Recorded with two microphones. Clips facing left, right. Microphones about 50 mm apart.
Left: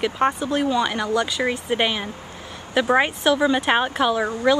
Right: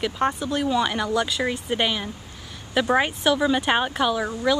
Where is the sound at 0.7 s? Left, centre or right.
Centre.